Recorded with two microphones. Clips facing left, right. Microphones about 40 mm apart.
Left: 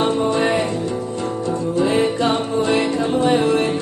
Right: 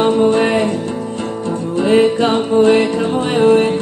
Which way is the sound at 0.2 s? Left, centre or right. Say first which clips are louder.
Right 6 dB; right.